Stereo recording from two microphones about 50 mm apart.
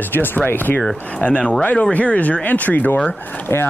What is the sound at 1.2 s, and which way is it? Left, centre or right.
Speech, left.